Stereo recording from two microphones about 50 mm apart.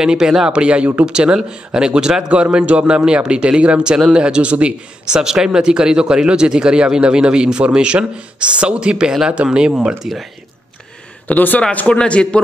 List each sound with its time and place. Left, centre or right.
0.0 s a man's voice: centre
0.5 s a man's voice: right
11.2 s speech: left
11.9 s a man's voice: centre